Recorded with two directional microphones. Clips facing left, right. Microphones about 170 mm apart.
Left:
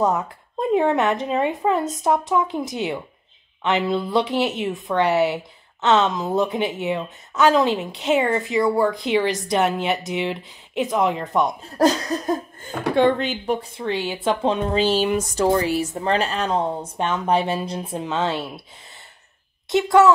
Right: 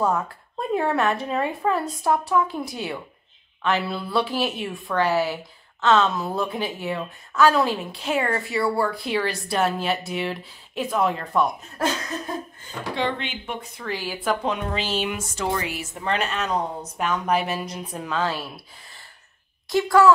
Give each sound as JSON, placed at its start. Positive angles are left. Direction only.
{"t": 0.0, "sound": "speech", "side_deg": 20}
{"t": 11.6, "sound": "speech", "side_deg": 35}
{"t": 12.6, "sound": "speech", "side_deg": 50}
{"t": 19.7, "sound": "speech", "side_deg": 20}